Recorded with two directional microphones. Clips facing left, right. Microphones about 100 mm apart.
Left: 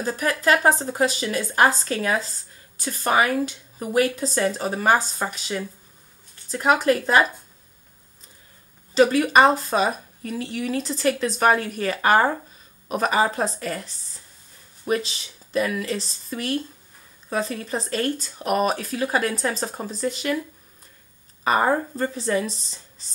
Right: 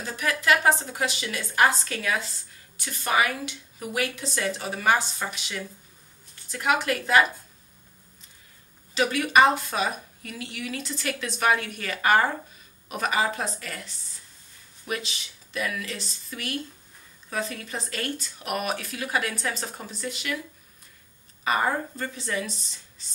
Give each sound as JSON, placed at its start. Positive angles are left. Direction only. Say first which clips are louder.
{"t": 0.0, "sound": "a woman's voice", "louder": "left 5 dB", "side_deg": 40}
{"t": 8.9, "sound": "a woman's voice", "louder": "left 5 dB", "side_deg": 35}
{"t": 21.5, "sound": "a woman's voice", "louder": "left 5 dB", "side_deg": 35}